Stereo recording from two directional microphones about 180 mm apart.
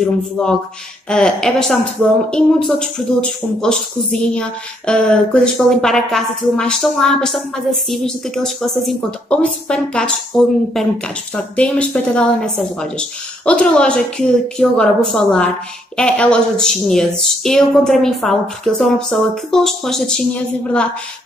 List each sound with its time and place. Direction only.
0.0 s speech: 5° left (ahead or behind)